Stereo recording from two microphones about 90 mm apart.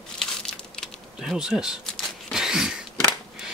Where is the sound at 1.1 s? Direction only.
5° right (ahead or behind).